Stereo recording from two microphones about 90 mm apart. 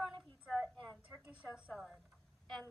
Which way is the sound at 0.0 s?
5° left (ahead or behind).